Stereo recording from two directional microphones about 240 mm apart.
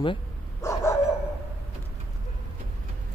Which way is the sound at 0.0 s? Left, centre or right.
Centre.